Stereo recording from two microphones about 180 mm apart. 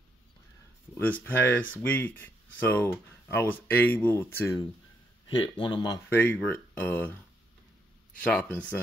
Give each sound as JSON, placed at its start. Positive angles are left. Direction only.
{"t": 0.9, "sound": "speech", "side_deg": 10}
{"t": 5.2, "sound": "a man's voice", "side_deg": 25}
{"t": 6.0, "sound": "speech", "side_deg": 10}
{"t": 8.2, "sound": "speech", "side_deg": 5}